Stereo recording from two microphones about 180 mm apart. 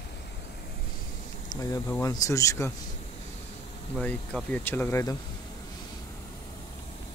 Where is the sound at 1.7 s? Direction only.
20° left (ahead or behind).